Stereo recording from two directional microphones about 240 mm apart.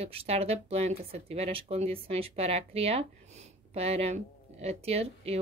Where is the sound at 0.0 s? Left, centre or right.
Right.